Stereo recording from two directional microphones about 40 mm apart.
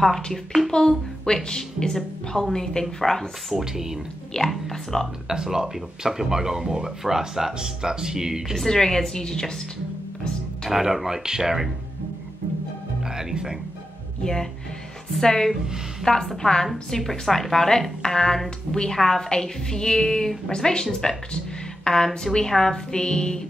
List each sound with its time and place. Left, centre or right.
0.0 s a woman's voice: centre
0.7 s a woman's voice: centre
3.5 s speech: centre
4.5 s speech: centre
5.3 s speech: centre
8.6 s a woman's voice: centre
10.7 s speech: centre
13.1 s speech: centre
14.2 s a woman's voice: centre
17.0 s a woman's voice: centre